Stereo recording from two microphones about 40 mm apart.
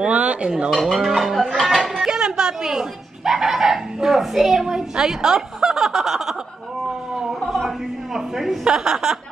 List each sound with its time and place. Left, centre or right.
0.0 s speech: right
0.7 s speech: centre
2.0 s speech: centre
4.6 s a woman's voice: centre
8.1 s speech: centre
8.6 s a woman's voice: centre